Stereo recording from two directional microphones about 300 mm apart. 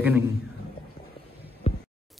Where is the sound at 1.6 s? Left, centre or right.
Centre.